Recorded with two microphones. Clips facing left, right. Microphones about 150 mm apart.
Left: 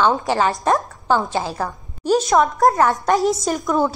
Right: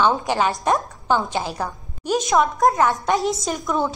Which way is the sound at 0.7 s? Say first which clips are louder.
Left 2 dB; centre (ahead or behind).